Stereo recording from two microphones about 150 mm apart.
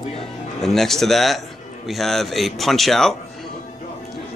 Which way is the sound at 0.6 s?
Centre (ahead or behind).